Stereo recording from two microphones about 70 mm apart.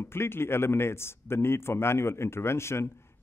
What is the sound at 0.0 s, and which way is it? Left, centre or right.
A man's voice, left.